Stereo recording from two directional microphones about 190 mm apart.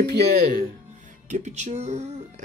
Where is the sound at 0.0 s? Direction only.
60° right (ahead or behind).